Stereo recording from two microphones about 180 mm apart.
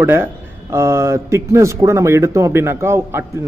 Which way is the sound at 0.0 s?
10° right (ahead or behind).